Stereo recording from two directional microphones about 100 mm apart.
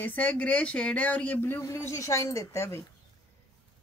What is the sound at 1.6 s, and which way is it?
Speech, 30° left (ahead or behind).